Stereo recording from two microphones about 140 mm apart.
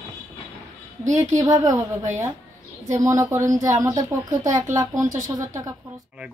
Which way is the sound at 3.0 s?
20° right (ahead or behind).